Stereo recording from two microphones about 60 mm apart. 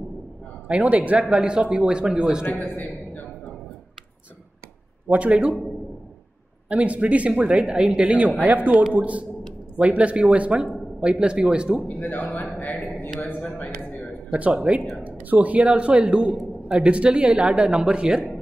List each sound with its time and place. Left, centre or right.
0.7 s speech: right
2.4 s a man's voice: left
5.1 s speech: right
6.7 s speech: right
12.0 s speech: left
14.3 s speech: right